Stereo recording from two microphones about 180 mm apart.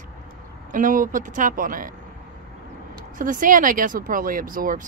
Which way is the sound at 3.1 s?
50° right (ahead or behind).